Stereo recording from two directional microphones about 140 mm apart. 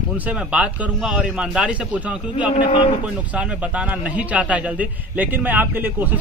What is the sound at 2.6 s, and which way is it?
Speech, 35° left (ahead or behind).